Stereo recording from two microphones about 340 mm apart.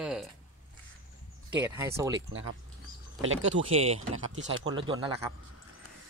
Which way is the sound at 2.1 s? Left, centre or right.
Right.